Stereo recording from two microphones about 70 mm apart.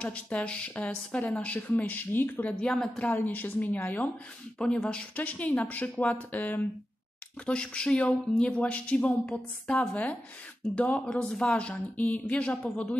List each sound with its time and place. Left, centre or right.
0.0 s speech: centre
2.6 s speech: centre
3.3 s speech: left
4.6 s speech: centre; by 6.6 s left
7.4 s speech: centre